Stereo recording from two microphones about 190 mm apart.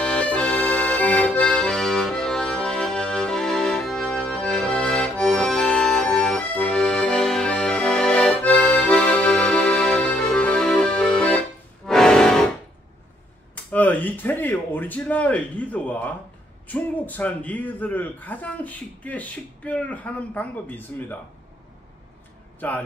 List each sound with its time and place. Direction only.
0.0 s accordion: 5° left (ahead or behind)
13.7 s a sound: 10° left (ahead or behind)
16.6 s a man's voice: 10° left (ahead or behind)